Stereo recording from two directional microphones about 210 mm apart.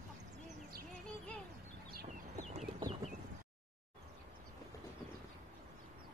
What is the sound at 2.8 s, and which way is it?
Clip-clop, 30° right (ahead or behind).